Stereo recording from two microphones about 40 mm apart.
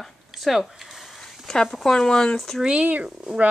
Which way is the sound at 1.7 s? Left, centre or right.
Centre.